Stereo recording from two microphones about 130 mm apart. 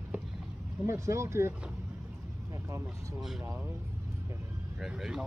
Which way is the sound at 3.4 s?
15° right (ahead or behind).